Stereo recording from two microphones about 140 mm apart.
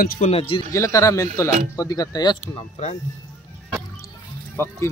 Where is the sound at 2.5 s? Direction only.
50° left (ahead or behind).